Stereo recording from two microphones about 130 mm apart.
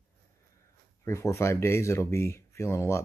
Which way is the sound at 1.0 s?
20° left (ahead or behind).